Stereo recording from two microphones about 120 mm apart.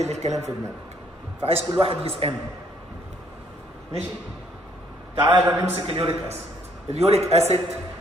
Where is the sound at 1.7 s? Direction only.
50° right (ahead or behind).